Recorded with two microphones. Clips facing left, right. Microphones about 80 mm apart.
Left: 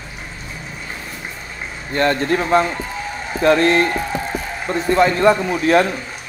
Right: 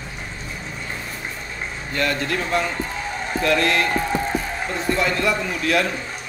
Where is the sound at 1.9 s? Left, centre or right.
Left.